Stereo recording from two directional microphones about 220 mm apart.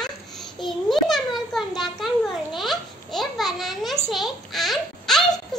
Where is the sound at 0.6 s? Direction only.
Centre (ahead or behind).